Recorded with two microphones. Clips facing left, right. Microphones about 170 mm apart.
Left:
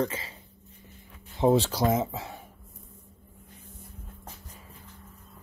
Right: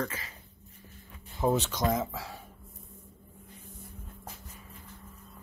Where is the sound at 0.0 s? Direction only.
25° left (ahead or behind).